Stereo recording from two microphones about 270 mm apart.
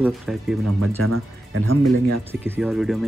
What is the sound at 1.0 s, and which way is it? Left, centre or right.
Speech, right.